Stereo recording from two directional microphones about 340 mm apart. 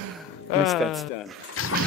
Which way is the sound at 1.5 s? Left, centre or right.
Left.